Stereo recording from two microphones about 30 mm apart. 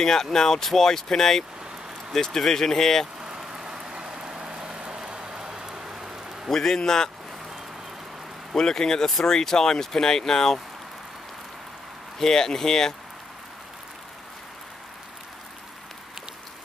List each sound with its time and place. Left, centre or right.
0.0 s speech: centre
3.3 s vehicle: right
4.6 s a sound: right
6.5 s speech: centre
8.5 s speech: left
12.2 s speech: centre